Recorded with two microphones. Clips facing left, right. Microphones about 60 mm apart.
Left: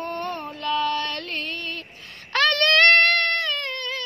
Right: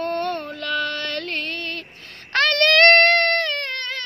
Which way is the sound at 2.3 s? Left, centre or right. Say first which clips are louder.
Right 2 dB; right.